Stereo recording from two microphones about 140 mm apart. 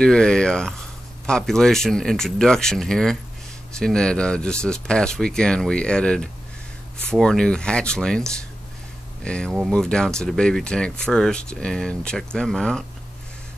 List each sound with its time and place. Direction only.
0.0 s speech: 5° left (ahead or behind)
9.2 s speech: 5° left (ahead or behind)